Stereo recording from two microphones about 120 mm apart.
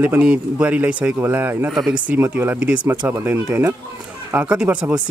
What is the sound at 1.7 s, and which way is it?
Speech, 5° right (ahead or behind).